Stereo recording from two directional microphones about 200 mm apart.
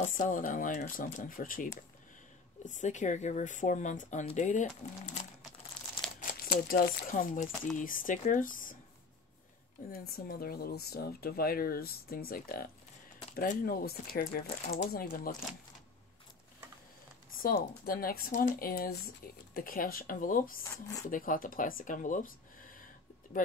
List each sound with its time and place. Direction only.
0.0 s speech: 40° left (ahead or behind)
6.4 s speech: 50° left (ahead or behind)
9.8 s speech: 50° left (ahead or behind)
17.4 s speech: 45° left (ahead or behind)